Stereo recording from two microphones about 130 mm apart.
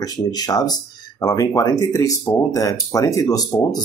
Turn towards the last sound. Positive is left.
turn(degrees=30)  # may be behind; listen again after turning